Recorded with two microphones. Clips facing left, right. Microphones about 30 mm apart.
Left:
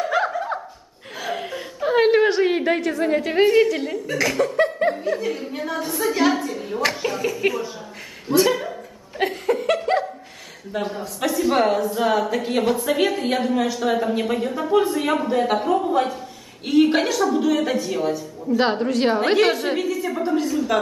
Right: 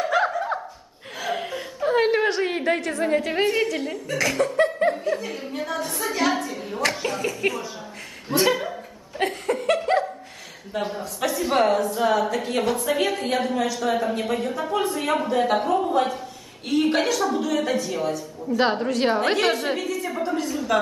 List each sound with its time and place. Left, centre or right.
0.0 s a sound: centre
1.2 s chuckle: centre
1.8 s a woman's voice: centre
8.3 s speech: centre
9.2 s laughter: centre
10.7 s a woman's voice: centre
17.4 s a woman's voice: centre